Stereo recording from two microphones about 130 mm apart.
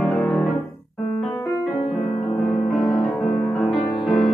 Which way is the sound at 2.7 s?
5° left (ahead or behind).